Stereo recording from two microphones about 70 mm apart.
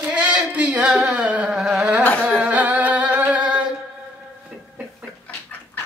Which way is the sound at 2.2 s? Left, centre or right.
Centre.